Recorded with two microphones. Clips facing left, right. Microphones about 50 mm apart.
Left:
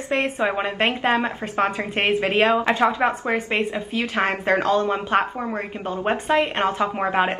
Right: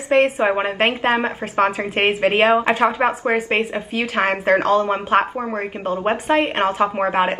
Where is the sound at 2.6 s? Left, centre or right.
Right.